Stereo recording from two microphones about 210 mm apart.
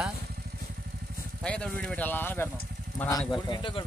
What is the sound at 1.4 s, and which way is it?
Speech, 5° left (ahead or behind).